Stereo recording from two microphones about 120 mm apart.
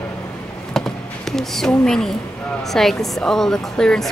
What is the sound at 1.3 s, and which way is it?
A woman's voice, 5° left (ahead or behind).